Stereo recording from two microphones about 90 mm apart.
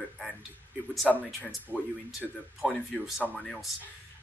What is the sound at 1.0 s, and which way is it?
Speech, 20° left (ahead or behind).